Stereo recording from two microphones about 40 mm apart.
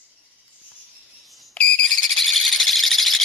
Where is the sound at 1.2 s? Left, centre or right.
Centre.